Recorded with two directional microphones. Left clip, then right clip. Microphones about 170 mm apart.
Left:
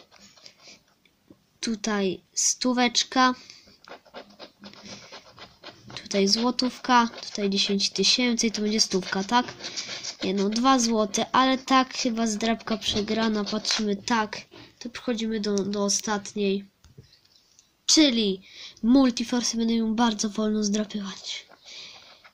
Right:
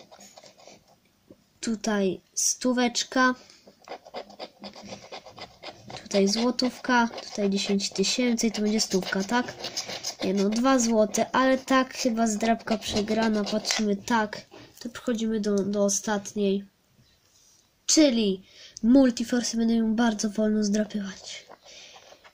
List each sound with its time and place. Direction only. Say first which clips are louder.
1.6 s speech: even; centre (ahead or behind)
3.8 s a sound: right 5 dB; 20° right (ahead or behind)
4.8 s scratch: even; centre (ahead or behind)
5.4 s rub: right 3 dB; 15° right (ahead or behind)
5.9 s a sound: even; centre (ahead or behind)
6.5 s speech: left 3 dB; centre (ahead or behind)
10.6 s speech: left 1 dB; centre (ahead or behind)
17.8 s speech: left 1 dB; centre (ahead or behind)
21.6 s a sound: left 4 dB; 5° right (ahead or behind)